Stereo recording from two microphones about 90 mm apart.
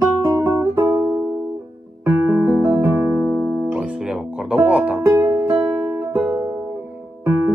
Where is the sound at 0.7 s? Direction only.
35° right (ahead or behind).